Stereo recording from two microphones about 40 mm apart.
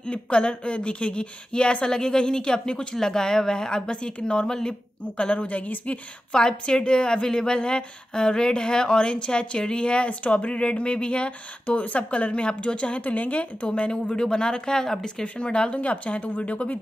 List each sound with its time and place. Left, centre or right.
0.0 s a woman's voice: left
13.0 s speech: left
13.7 s a woman's voice: left
15.2 s speech: left